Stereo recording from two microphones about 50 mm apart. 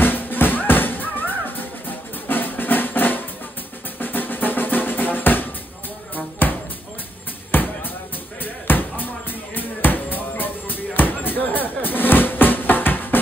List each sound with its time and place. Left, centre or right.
0.0 s music: left
4.0 s drum: left
8.6 s basketball bounce: left